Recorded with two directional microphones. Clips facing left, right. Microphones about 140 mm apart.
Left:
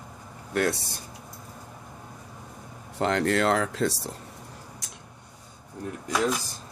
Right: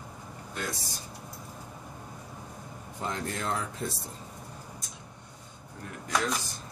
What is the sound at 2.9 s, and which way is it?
Speech, 75° left (ahead or behind).